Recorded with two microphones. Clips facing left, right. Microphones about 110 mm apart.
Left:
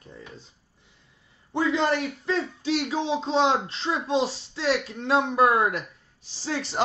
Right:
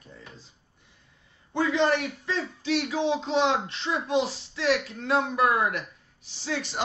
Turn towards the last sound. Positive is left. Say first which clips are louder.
# left 1 dB
turn(degrees=35)  # may be behind; listen again after turning